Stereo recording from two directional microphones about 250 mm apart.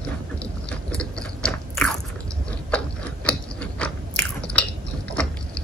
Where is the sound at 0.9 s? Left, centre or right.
Centre.